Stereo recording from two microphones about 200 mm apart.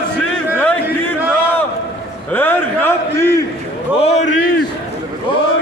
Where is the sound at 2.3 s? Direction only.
10° left (ahead or behind).